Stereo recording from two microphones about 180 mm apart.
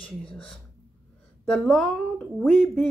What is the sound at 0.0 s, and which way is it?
Speech, 5° left (ahead or behind).